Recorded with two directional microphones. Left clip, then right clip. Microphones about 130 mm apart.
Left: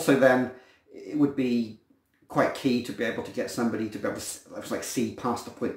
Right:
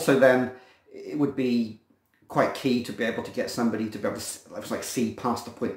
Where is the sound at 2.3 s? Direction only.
20° right (ahead or behind).